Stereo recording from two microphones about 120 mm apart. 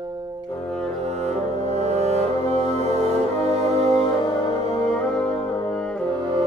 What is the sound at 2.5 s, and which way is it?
Music, 45° left (ahead or behind).